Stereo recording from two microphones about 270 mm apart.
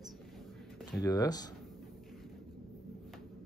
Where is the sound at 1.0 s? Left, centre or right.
Centre.